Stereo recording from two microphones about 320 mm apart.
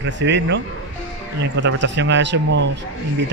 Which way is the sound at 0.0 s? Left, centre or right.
Right.